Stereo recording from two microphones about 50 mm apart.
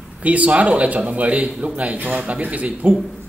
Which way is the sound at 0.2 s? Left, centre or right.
Right.